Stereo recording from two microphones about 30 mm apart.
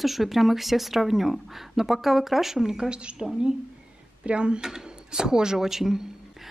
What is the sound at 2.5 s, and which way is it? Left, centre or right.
Speech, centre.